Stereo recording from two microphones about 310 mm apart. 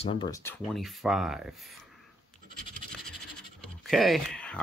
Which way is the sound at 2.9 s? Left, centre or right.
Centre.